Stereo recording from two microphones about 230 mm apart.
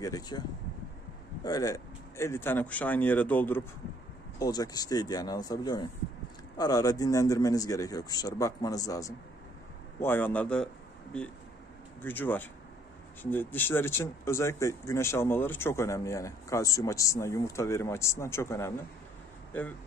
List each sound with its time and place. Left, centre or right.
0.0 s speech: centre
1.4 s speech: centre